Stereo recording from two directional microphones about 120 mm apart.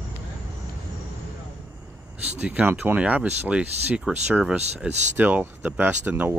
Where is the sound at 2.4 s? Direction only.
15° right (ahead or behind).